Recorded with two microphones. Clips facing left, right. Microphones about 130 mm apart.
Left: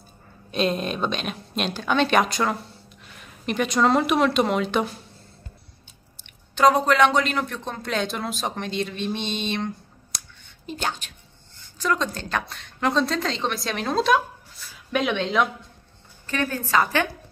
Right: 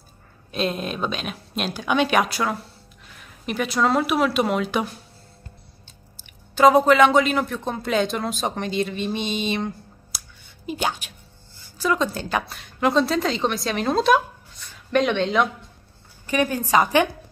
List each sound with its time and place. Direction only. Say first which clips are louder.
0.5 s speech: left 2 dB; centre (ahead or behind)
6.1 s speech: right 4 dB; 5° right (ahead or behind)
10.7 s a woman's voice: right 3 dB; 10° right (ahead or behind)
16.3 s a woman's voice: right 4 dB; 15° right (ahead or behind)